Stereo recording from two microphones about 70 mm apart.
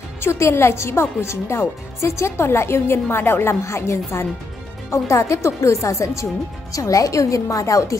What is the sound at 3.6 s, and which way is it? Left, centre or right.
Speech, left.